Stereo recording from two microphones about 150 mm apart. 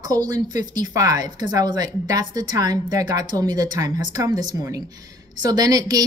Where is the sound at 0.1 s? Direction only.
25° right (ahead or behind).